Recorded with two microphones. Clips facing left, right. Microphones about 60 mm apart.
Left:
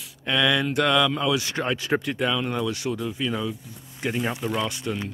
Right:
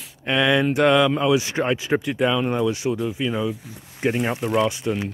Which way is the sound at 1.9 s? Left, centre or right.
Centre.